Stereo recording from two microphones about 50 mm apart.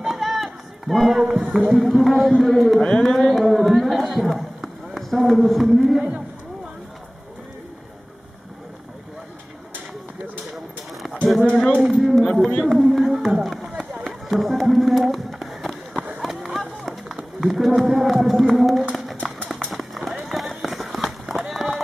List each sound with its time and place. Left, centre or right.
0.0 s run: centre
1.5 s speech: centre
3.1 s carnatic music: centre
3.3 s speech: centre
10.4 s a sound: centre
11.8 s speech: centre
12.6 s a sound: centre
14.0 s music: centre
16.2 s run: centre
18.6 s a sound: centre
19.5 s run: centre